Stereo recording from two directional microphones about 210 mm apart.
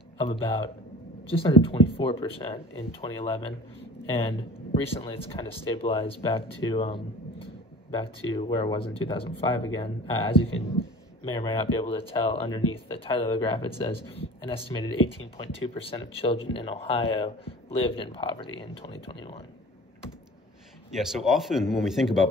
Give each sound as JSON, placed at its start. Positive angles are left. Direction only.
{"t": 0.2, "sound": "speech", "side_deg": 25}
{"t": 4.8, "sound": "speech", "side_deg": 25}
{"t": 14.2, "sound": "a sound", "side_deg": 25}
{"t": 14.7, "sound": "speech", "side_deg": 25}
{"t": 20.9, "sound": "speech", "side_deg": 0}